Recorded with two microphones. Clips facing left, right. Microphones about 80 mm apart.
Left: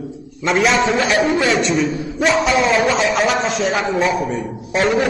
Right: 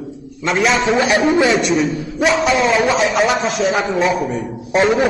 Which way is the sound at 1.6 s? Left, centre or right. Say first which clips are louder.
Right 1 dB; centre.